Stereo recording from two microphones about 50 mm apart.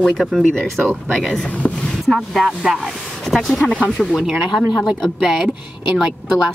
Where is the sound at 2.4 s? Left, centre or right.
Centre.